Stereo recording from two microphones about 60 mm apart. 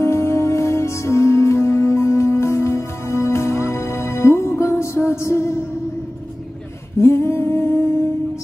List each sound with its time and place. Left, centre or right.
0.0 s music: left
7.0 s humming: left